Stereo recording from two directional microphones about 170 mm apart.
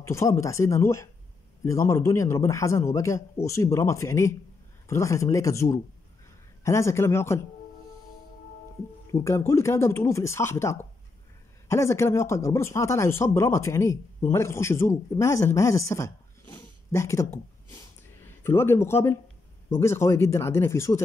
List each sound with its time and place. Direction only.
0.0 s speech: 15° left (ahead or behind)
9.1 s speech: 15° left (ahead or behind)